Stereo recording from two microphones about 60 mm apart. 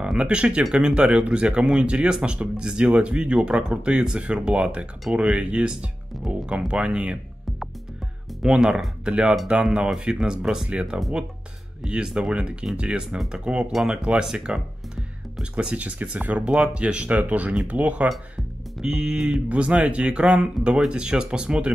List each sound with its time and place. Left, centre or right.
0.2 s speech: centre
8.5 s speech: centre
18.8 s speech: centre
19.5 s speech: right
20.2 s speech: centre
20.9 s speech: centre